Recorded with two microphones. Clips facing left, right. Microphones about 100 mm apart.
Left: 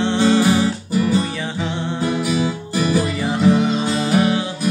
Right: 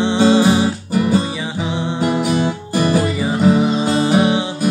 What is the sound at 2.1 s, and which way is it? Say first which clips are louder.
Music: right 3 dB; 55° right (ahead or behind).